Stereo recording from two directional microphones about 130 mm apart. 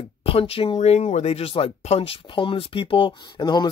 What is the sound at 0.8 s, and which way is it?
Speech, 55° left (ahead or behind).